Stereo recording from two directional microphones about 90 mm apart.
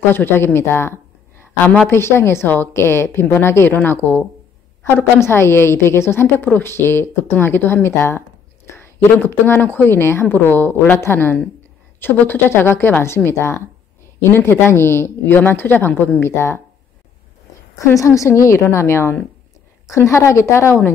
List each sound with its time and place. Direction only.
0.1 s a woman's voice: 25° left (ahead or behind)
17.7 s a woman's voice: 35° left (ahead or behind)